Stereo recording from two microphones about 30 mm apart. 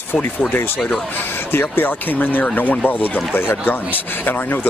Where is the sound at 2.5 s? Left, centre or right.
Left.